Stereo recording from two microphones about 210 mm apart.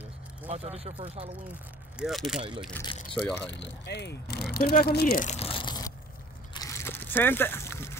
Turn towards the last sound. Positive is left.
turn(degrees=10)  # may be behind; listen again after turning